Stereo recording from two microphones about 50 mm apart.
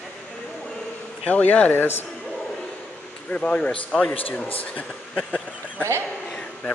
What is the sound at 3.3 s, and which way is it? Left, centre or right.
Speech, left.